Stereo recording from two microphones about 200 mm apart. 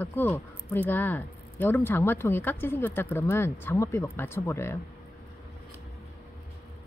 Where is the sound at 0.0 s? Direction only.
10° left (ahead or behind).